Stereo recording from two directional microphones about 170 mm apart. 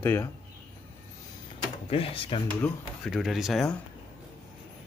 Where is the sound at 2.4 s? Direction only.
10° left (ahead or behind).